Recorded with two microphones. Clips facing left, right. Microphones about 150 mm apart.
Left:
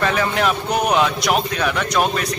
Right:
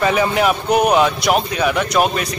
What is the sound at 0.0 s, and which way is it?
A man's voice, 10° right (ahead or behind).